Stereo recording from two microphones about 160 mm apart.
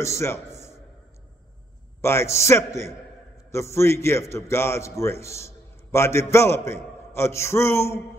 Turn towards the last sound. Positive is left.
turn(degrees=15)  # may be behind; listen again after turning